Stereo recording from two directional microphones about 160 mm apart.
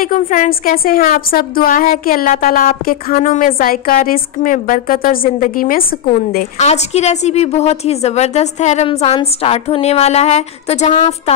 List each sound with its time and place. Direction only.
0.0 s a woman's voice: 55° left (ahead or behind)
6.6 s a woman's voice: 45° left (ahead or behind)